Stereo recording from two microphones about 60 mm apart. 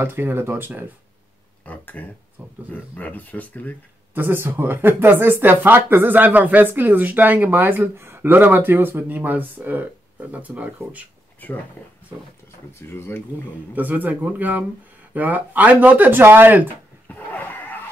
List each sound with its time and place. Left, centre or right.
0.0 s speech: right
1.6 s a sound: left
2.7 s speech: left
4.1 s speech: right
11.8 s speech: left
13.7 s speech: right
17.1 s a sound: left